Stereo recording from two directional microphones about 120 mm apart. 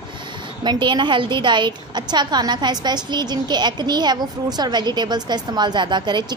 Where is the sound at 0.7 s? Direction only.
40° right (ahead or behind).